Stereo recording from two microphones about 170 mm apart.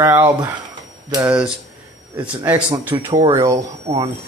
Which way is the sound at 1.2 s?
5° right (ahead or behind).